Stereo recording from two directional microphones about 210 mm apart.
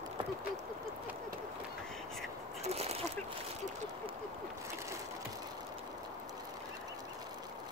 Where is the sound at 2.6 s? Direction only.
30° right (ahead or behind).